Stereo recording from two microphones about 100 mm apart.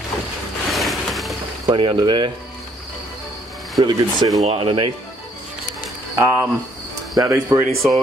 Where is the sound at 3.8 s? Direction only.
40° right (ahead or behind).